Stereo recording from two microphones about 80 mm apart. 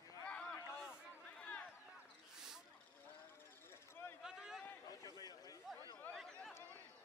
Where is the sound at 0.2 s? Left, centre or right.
Centre.